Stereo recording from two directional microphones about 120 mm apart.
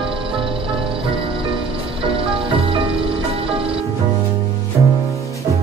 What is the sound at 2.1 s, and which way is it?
Music, 50° right (ahead or behind).